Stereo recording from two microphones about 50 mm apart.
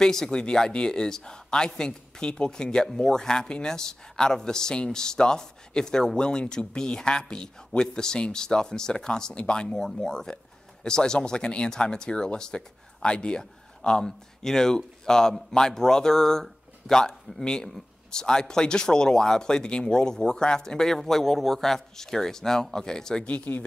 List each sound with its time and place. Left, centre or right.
0.0 s speech: centre
23.2 s speech: left